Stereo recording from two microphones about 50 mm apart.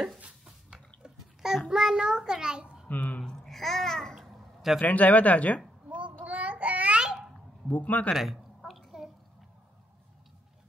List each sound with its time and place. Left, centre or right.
1.0 s babbling: centre
1.7 s a child's voice: centre
2.9 s squish: left
3.3 s babbling: centre
4.1 s babbling: centre
4.8 s speech: left
5.9 s child singing: right
7.0 s a sound: centre
7.6 s speech: left
8.6 s a sound: centre